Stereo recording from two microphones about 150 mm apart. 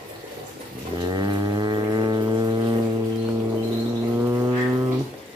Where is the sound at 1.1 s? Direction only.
30° right (ahead or behind).